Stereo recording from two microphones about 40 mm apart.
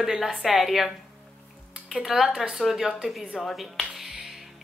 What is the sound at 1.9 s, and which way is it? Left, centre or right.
A woman's voice, centre.